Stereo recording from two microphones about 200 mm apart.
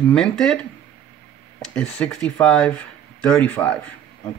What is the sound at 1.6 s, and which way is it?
Speech, 5° left (ahead or behind).